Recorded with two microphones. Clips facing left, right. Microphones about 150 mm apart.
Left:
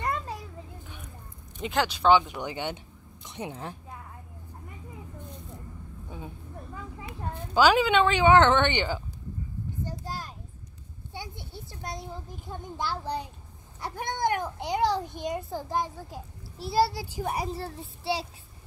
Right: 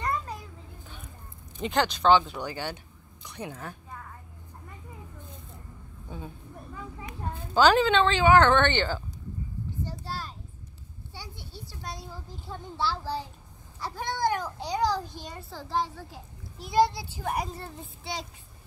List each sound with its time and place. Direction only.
1.6 s a child's voice: 5° left (ahead or behind); by 3.7 s 25° left (ahead or behind)
6.0 s a sound: 10° left (ahead or behind)
7.5 s speech: 10° left (ahead or behind)
11.8 s a child's voice: 20° left (ahead or behind)
16.1 s a child's voice: 40° left (ahead or behind)
16.7 s a child's voice: 10° left (ahead or behind)